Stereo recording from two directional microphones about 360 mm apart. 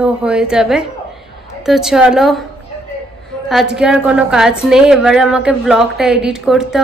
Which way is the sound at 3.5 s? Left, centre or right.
Centre.